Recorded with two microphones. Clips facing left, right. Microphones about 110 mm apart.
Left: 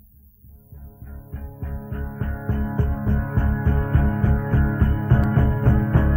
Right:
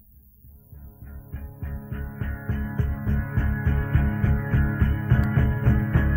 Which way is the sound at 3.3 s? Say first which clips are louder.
Left 4 dB; 35° left (ahead or behind).